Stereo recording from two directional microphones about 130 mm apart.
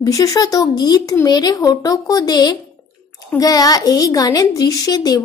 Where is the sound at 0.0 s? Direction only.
25° left (ahead or behind).